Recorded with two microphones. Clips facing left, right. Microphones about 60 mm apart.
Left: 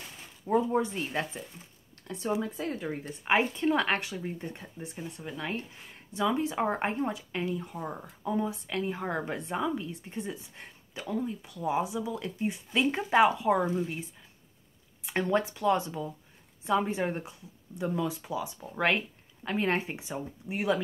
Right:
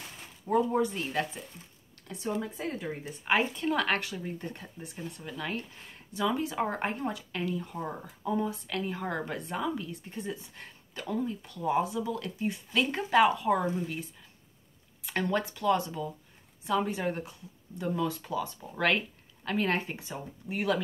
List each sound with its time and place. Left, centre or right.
0.7 s speech: left
2.1 s speech: centre
2.8 s speech: left
7.7 s speech: centre
8.5 s speech: centre
15.0 s a woman's voice: left